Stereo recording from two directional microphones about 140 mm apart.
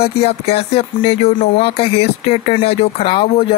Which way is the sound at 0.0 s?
45° left (ahead or behind).